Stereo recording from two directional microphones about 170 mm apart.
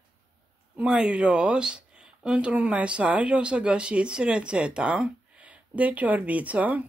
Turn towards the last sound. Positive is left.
turn(degrees=-10)  # may be behind; listen again after turning